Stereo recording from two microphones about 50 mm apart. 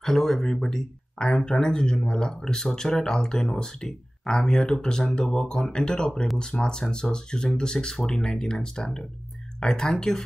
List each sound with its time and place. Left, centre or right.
0.0 s speech: centre